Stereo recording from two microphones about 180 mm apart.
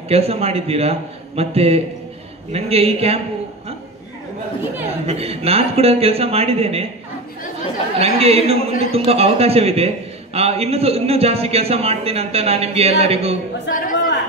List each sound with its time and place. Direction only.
0.1 s a man's voice: 35° right (ahead or behind)
5.0 s a man's voice: 35° right (ahead or behind)
8.0 s a man's voice: 35° right (ahead or behind)
13.7 s speech: 50° left (ahead or behind)